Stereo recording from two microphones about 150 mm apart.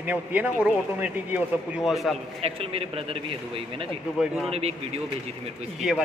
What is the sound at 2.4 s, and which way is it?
A man's voice, 40° right (ahead or behind).